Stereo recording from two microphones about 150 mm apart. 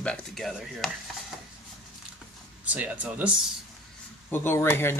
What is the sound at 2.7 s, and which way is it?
Speech, 10° right (ahead or behind).